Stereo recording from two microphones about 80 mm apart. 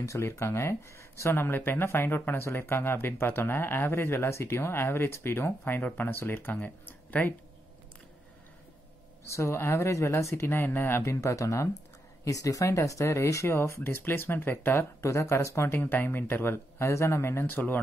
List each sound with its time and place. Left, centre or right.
0.0 s speech: left
9.2 s speech: left